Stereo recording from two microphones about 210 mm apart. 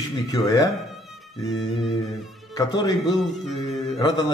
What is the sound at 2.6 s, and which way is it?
A man's voice, 15° left (ahead or behind).